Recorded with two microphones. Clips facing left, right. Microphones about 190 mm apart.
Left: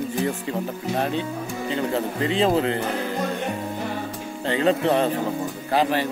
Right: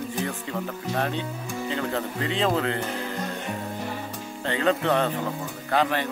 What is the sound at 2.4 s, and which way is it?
Speech, 25° left (ahead or behind).